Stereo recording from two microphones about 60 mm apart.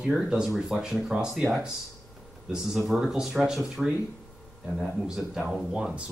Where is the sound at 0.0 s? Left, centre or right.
Centre.